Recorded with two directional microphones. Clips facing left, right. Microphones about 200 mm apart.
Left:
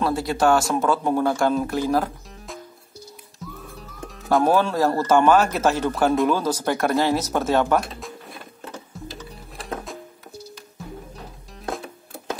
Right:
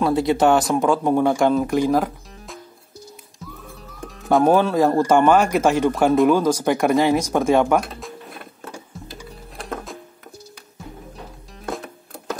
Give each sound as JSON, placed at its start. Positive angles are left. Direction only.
{"t": 0.0, "sound": "speech", "side_deg": -20}
{"t": 4.1, "sound": "music", "side_deg": 0}
{"t": 4.5, "sound": "speech", "side_deg": -15}
{"t": 7.5, "sound": "speech", "side_deg": 0}
{"t": 9.6, "sound": "music", "side_deg": 0}